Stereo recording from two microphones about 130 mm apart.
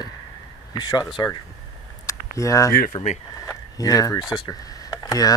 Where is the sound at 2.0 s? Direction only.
25° left (ahead or behind).